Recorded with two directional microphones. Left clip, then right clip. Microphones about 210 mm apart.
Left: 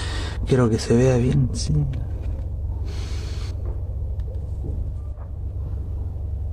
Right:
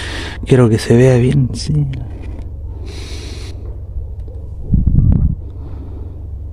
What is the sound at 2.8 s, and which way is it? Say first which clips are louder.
Snort: right 8 dB; 25° right (ahead or behind).